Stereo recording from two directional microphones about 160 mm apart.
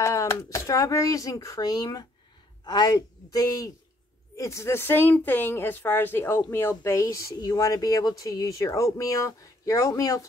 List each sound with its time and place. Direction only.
0.0 s a woman's voice: 20° left (ahead or behind)